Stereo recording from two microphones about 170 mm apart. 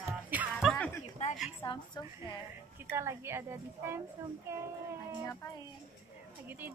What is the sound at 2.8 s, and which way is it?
A woman's voice, 15° right (ahead or behind).